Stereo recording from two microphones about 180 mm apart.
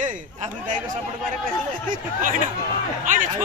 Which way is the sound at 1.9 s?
45° right (ahead or behind).